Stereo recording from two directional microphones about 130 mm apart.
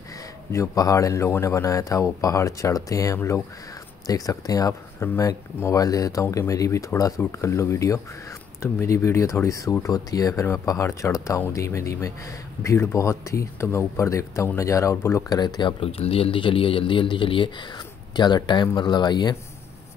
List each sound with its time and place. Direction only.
0.5 s speech: 25° left (ahead or behind)